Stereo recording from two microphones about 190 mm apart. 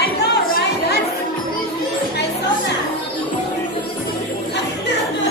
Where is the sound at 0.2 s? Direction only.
60° left (ahead or behind).